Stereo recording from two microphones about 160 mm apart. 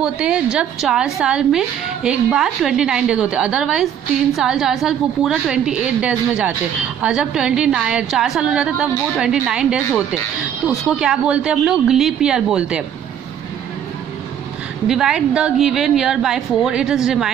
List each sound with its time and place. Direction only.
0.0 s a woman's voice: 5° right (ahead or behind)
14.9 s a woman's voice: 5° right (ahead or behind)